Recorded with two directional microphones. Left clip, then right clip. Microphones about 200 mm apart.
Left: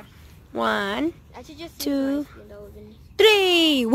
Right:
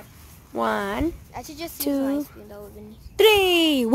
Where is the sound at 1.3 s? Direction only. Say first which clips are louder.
Right 5 dB; 50° right (ahead or behind).